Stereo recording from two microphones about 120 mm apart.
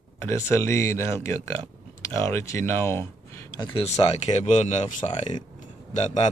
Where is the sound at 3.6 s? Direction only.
40° left (ahead or behind).